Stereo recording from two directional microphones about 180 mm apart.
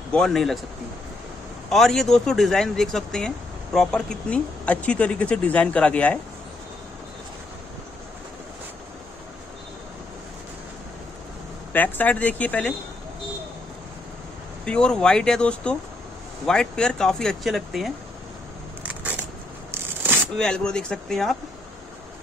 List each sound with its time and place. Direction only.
0.1 s speech: 5° left (ahead or behind)
1.7 s speech: centre (ahead or behind)
11.7 s speech: 10° left (ahead or behind)
14.6 s speech: 5° left (ahead or behind)
18.8 s a sound: 10° right (ahead or behind)
20.3 s speech: 5° left (ahead or behind)